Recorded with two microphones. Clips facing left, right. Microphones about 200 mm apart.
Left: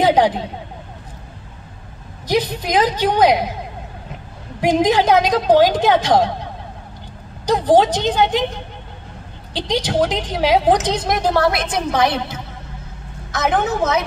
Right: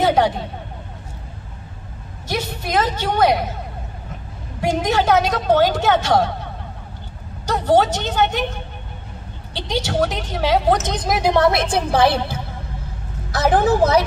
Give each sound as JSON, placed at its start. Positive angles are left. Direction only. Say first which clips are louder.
{"t": 0.0, "sound": "speech", "louder": "left 2 dB", "side_deg": 15}
{"t": 2.2, "sound": "a woman's voice", "louder": "left 6 dB", "side_deg": 15}
{"t": 4.6, "sound": "a woman's voice", "louder": "left 4 dB", "side_deg": 15}
{"t": 7.4, "sound": "a woman's voice", "louder": "left 3 dB", "side_deg": 15}
{"t": 9.6, "sound": "a woman's voice", "louder": "left 2 dB", "side_deg": 15}
{"t": 11.1, "sound": "a woman's voice", "louder": "right 3 dB", "side_deg": -10}
{"t": 11.4, "sound": "a woman's voice", "louder": "right 1 dB", "side_deg": -25}